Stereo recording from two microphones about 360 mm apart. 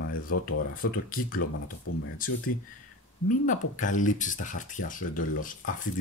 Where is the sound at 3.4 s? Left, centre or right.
Left.